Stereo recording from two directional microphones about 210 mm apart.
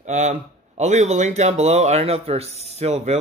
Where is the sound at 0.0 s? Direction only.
35° right (ahead or behind).